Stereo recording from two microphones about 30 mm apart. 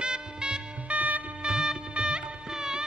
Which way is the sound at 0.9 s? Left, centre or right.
Right.